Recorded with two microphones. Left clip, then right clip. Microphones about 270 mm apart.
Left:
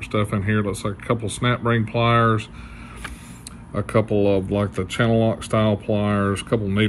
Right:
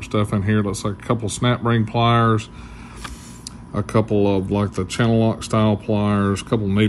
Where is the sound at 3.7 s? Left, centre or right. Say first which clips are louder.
Right 1 dB; centre.